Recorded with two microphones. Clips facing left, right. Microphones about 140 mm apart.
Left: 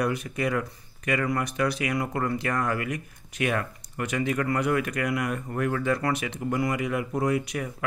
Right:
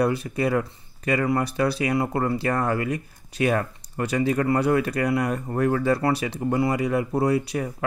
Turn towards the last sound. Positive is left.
turn(degrees=-30)  # may be behind; listen again after turning